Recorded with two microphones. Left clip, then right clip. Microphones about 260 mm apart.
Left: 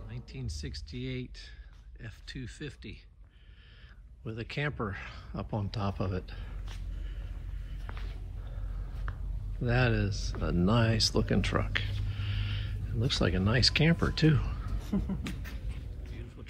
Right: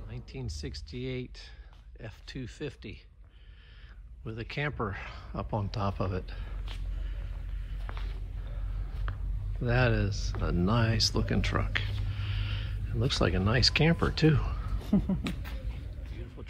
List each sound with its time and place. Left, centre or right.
0.1 s speech: centre
4.2 s speech: centre
9.1 s a sound: centre
9.6 s speech: centre
14.9 s speech: right